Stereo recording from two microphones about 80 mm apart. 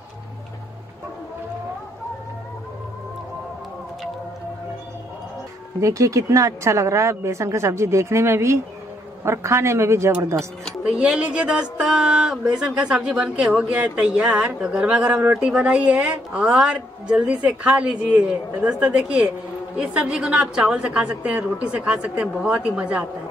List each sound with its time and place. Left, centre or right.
5.8 s a woman's voice: right
10.8 s speech: centre